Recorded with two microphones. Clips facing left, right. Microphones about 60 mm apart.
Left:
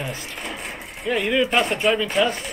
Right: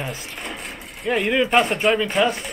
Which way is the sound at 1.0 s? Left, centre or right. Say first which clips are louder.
Right 1 dB; centre.